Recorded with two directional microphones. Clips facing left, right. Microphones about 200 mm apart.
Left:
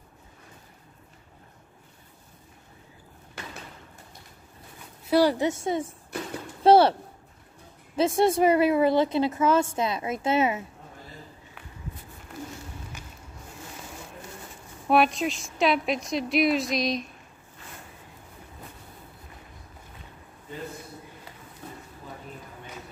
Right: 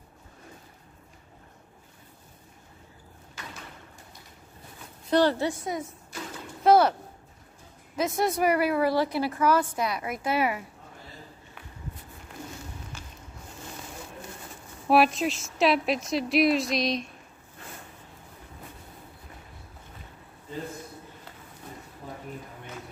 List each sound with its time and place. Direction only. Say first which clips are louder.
5.1 s a woman's voice: left 2 dB; 10° left (ahead or behind)
5.5 s a woman's voice: left 4 dB; 25° left (ahead or behind)
14.9 s a woman's voice: even; centre (ahead or behind)